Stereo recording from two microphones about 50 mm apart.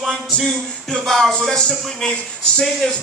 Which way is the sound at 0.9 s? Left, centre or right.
Centre.